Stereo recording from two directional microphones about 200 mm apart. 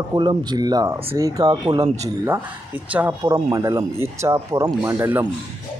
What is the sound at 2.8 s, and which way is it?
Speech, 5° right (ahead or behind).